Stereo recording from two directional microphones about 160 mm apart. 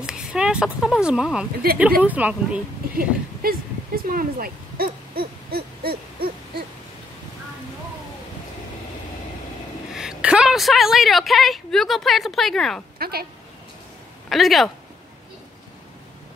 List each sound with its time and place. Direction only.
0.0 s speech: 5° right (ahead or behind)
2.9 s speech: 65° right (ahead or behind)
9.9 s a woman's voice: 5° right (ahead or behind)
13.0 s a woman's voice: 75° right (ahead or behind)
14.3 s speech: centre (ahead or behind)